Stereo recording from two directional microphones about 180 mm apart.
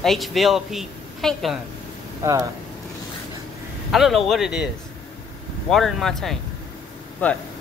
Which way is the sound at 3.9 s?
Centre (ahead or behind).